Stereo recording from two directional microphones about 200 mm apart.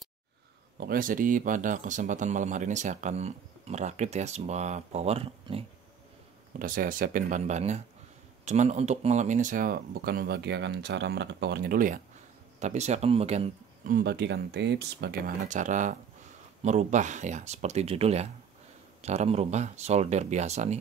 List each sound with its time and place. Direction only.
0.7 s speech: 45° right (ahead or behind); by 5.7 s 30° right (ahead or behind)
6.6 s speech: 45° right (ahead or behind)
12.5 s speech: 35° right (ahead or behind); by 15.3 s 55° right (ahead or behind)
15.4 s speech: 40° right (ahead or behind)